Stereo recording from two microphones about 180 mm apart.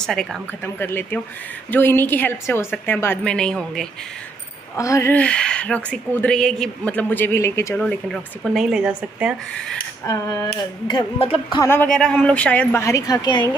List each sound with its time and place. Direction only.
0.0 s speech: centre (ahead or behind)
4.7 s speech: 15° left (ahead or behind); by 9.8 s 5° right (ahead or behind)
10.0 s speech: 20° left (ahead or behind)
11.6 s speech: 10° left (ahead or behind)